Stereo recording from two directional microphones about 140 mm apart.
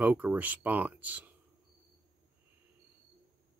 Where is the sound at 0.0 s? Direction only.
15° right (ahead or behind).